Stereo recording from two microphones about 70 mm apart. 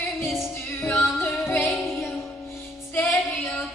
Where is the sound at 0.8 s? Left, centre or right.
Left.